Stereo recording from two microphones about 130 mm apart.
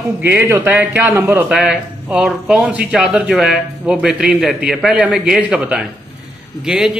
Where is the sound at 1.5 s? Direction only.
5° right (ahead or behind).